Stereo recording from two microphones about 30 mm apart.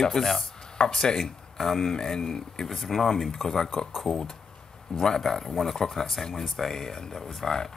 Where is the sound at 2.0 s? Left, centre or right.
Left.